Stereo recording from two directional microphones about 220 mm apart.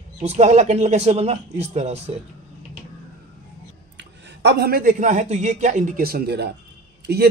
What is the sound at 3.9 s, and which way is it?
A man's voice, 50° right (ahead or behind).